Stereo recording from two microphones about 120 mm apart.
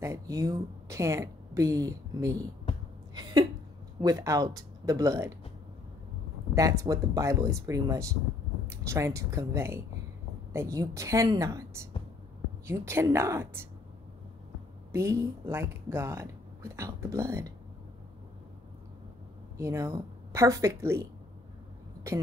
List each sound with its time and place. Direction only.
0.0 s speech: 25° right (ahead or behind)
2.7 s a sound: 55° left (ahead or behind)
4.0 s speech: 30° right (ahead or behind)
6.5 s speech: 25° right (ahead or behind)
14.9 s speech: 25° right (ahead or behind)
19.5 s speech: 25° right (ahead or behind)